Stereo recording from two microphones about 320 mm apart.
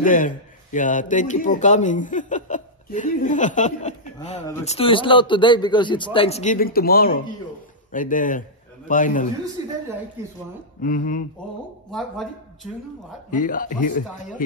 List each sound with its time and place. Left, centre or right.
0.0 s a man's voice: left
9.6 s speech: centre
10.8 s speech: left
11.9 s speech: centre
13.3 s speech: left